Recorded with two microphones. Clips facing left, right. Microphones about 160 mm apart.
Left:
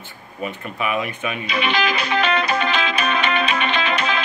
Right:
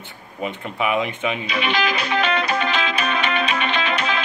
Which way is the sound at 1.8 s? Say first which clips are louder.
Even; 80° left.